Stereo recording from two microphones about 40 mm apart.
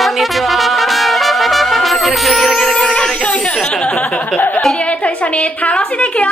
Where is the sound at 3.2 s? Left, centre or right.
Left.